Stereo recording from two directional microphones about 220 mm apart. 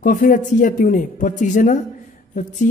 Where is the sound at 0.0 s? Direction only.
40° left (ahead or behind).